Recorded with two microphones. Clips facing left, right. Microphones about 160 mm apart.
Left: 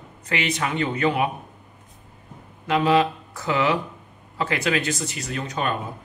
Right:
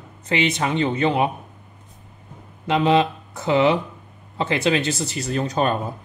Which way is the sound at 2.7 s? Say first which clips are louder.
Right 1 dB; 25° right (ahead or behind).